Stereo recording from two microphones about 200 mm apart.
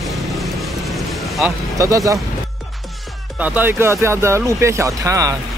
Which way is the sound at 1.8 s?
15° right (ahead or behind).